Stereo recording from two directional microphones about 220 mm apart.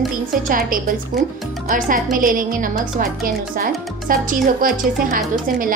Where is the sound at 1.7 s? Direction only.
40° right (ahead or behind).